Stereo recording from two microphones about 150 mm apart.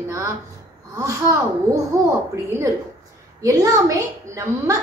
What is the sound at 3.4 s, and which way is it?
A woman's voice, 20° right (ahead or behind).